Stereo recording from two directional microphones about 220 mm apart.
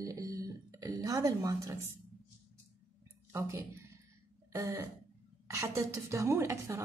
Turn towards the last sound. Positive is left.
turn(degrees=-15)  # may be behind; listen again after turning